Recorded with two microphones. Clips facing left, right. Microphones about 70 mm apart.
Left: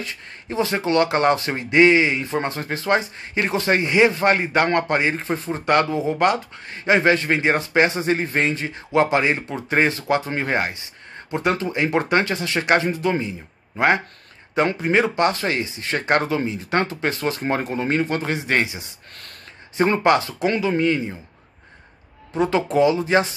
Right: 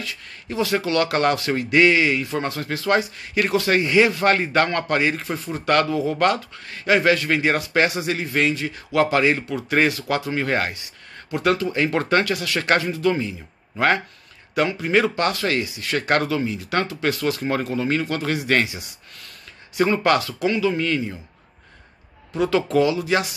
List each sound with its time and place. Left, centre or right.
0.0 s speech: left
22.3 s speech: left